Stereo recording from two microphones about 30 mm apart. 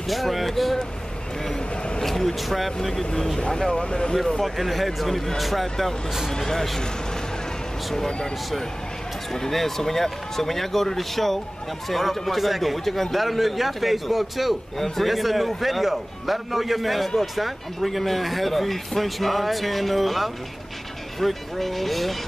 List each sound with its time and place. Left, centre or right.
0.1 s speech: centre
1.4 s speech: centre
3.3 s speech: left
4.4 s speech: centre
6.3 s speech: centre
9.5 s speech: centre